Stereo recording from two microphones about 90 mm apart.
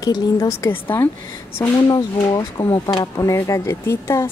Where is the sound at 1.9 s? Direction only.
45° left (ahead or behind).